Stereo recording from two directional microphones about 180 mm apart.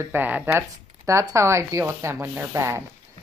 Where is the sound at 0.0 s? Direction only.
10° right (ahead or behind).